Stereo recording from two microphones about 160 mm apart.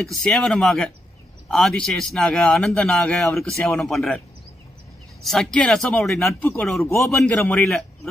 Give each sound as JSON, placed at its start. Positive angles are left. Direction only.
{"t": 0.0, "sound": "a man's voice", "side_deg": 5}
{"t": 5.2, "sound": "a man's voice", "side_deg": 5}
{"t": 6.8, "sound": "a man's voice", "side_deg": 15}
{"t": 7.2, "sound": "a man's voice", "side_deg": 5}